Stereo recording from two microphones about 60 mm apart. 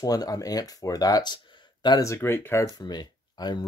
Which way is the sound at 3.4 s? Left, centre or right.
Left.